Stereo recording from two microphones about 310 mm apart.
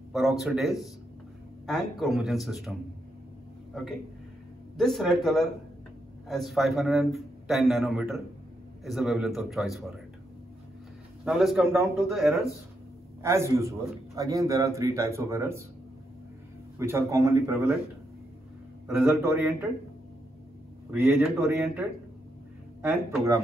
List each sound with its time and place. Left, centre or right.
0.1 s a man's voice: centre
3.7 s a man's voice: centre
11.2 s a man's voice: centre
16.7 s a man's voice: centre
18.9 s a man's voice: centre
20.9 s a man's voice: centre